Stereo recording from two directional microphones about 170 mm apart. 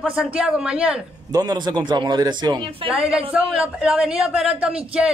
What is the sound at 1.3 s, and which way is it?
Speech, 25° right (ahead or behind).